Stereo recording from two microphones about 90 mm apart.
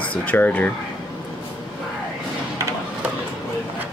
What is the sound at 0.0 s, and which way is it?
Speech, 15° left (ahead or behind).